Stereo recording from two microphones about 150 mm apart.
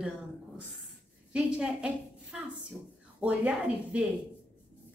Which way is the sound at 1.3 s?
5° right (ahead or behind).